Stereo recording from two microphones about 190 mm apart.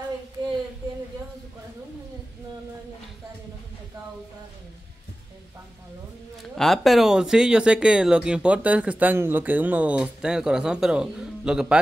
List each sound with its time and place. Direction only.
6.5 s speech: centre (ahead or behind)